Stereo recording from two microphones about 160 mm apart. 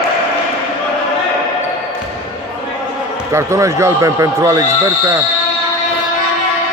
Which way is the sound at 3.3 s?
20° right (ahead or behind).